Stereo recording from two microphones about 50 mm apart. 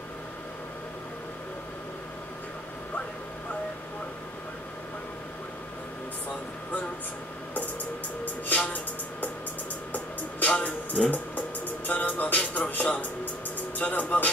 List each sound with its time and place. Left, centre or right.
8.5 s speech: left
9.9 s music: left
13.7 s speech: left